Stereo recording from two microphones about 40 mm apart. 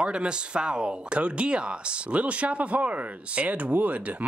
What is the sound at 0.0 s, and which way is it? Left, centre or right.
Speech, right.